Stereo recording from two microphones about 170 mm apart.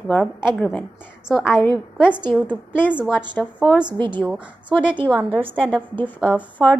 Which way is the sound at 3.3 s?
10° left (ahead or behind).